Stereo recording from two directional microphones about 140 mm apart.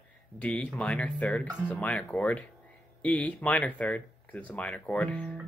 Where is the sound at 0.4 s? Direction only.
10° left (ahead or behind).